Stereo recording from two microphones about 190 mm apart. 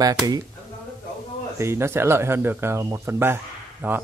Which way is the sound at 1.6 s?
15° right (ahead or behind).